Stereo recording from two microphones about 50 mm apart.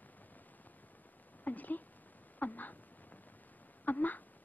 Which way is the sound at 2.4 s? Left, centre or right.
Left.